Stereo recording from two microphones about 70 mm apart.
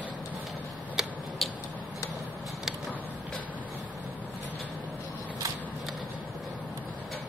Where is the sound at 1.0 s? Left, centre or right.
Centre.